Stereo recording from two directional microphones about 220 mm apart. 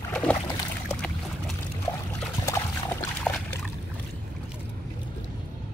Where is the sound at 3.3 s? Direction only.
Centre (ahead or behind).